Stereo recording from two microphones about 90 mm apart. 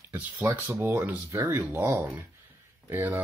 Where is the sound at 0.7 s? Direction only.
35° right (ahead or behind).